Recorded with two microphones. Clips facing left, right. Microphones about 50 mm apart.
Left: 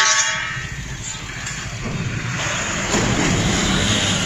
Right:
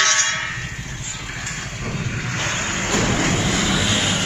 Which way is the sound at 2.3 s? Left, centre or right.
Left.